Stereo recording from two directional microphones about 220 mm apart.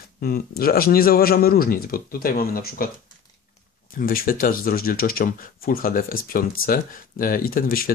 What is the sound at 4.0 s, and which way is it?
Speech, 40° left (ahead or behind).